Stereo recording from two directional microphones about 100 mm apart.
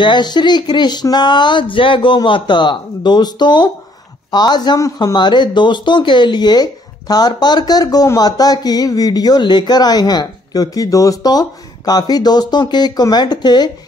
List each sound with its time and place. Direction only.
0.0 s speech: 50° left (ahead or behind)